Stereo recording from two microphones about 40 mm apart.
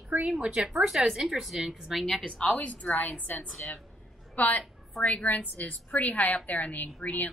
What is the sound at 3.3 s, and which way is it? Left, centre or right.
Speech, left.